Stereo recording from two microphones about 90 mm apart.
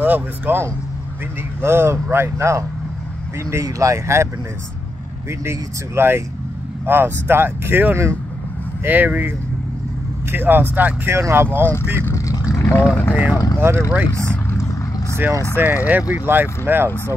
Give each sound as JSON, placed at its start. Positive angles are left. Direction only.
{"t": 0.0, "sound": "speech", "side_deg": -20}
{"t": 3.6, "sound": "speech", "side_deg": -35}
{"t": 5.4, "sound": "speech", "side_deg": -25}
{"t": 10.3, "sound": "speech", "side_deg": -25}
{"t": 12.1, "sound": "vehicle", "side_deg": 40}
{"t": 12.6, "sound": "speech", "side_deg": 25}
{"t": 13.1, "sound": "speech", "side_deg": -15}
{"t": 15.5, "sound": "speech", "side_deg": -20}